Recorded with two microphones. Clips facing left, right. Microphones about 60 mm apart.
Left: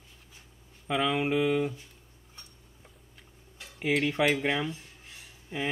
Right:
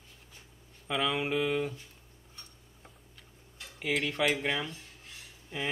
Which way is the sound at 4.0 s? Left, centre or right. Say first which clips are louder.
Left 3 dB; centre.